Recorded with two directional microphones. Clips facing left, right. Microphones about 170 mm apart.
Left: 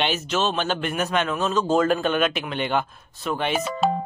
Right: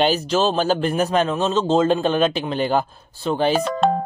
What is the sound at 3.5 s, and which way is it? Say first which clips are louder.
Speech: right 4 dB; 5° left (ahead or behind).